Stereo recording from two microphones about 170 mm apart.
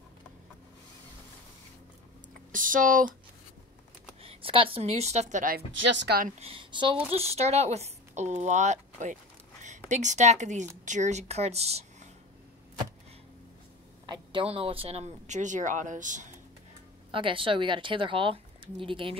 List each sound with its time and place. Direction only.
2.5 s speech: 50° right (ahead or behind)
4.2 s a woman's voice: 35° right (ahead or behind); by 5.6 s 50° right (ahead or behind)
5.7 s speech: 90° right
6.2 s speech: 35° right (ahead or behind)
14.0 s speech: 25° right (ahead or behind); by 16.3 s 50° right (ahead or behind)
17.1 s speech: 30° right (ahead or behind)